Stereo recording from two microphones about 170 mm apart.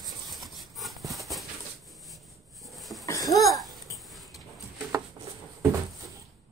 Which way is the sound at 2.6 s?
Centre (ahead or behind).